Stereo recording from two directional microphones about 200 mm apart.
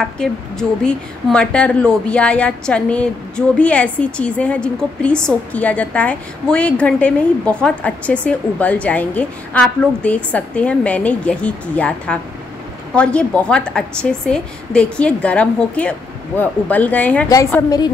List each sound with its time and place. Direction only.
0.2 s a woman's voice: 5° left (ahead or behind)